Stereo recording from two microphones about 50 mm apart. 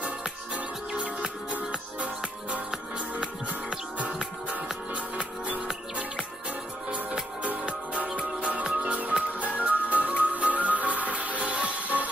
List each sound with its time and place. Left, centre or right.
0.6 s music: right
7.4 s music: right